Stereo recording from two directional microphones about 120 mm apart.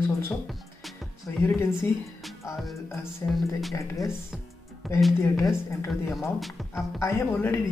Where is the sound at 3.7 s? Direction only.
25° left (ahead or behind).